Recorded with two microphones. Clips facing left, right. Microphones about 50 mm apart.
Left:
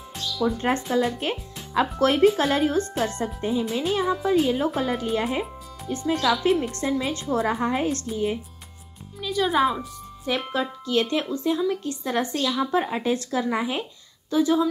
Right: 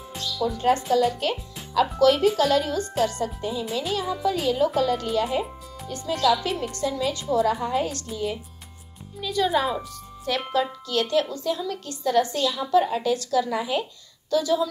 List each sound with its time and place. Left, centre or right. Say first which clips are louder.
0.4 s speech: right 1 dB; left
9.2 s speech: left 1 dB; centre; by 14.7 s left